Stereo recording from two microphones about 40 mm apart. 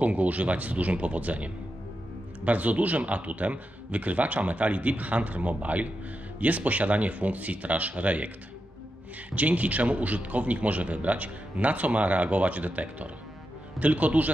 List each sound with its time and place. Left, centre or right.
0.0 s a man's voice: right
9.3 s a man's voice: right